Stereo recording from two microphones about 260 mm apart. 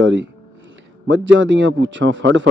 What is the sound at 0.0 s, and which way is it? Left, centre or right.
Speech, right.